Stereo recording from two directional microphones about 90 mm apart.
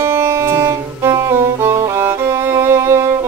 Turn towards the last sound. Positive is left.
turn(degrees=-30)  # may be behind; listen again after turning